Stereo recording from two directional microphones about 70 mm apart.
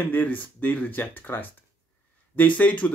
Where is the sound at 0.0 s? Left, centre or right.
Left.